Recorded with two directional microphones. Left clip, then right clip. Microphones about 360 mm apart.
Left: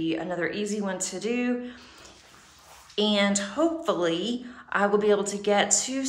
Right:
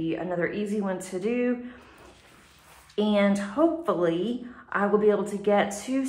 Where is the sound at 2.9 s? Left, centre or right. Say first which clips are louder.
Even; centre.